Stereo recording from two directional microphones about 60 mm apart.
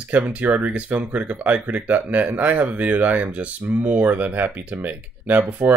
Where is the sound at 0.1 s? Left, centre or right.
Right.